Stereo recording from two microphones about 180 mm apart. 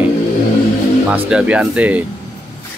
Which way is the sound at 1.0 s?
5° right (ahead or behind).